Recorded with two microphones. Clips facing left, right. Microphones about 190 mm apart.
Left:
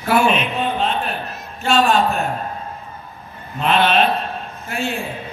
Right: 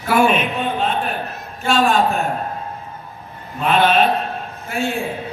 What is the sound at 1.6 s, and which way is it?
Speech, 50° right (ahead or behind).